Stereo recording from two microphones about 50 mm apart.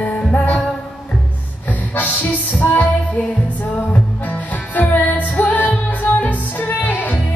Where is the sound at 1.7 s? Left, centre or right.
Left.